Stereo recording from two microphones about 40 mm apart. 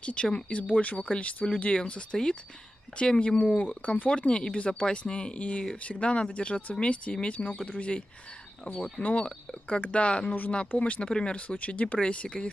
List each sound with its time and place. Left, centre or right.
0.0 s speech: left
0.9 s speech: left